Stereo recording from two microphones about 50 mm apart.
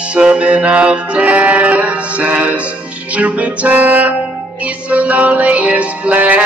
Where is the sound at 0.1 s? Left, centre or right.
Right.